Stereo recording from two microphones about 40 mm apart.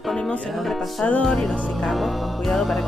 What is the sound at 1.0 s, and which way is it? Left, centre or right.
Music, left.